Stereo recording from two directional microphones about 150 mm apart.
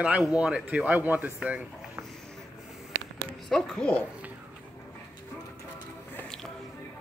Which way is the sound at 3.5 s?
5° left (ahead or behind).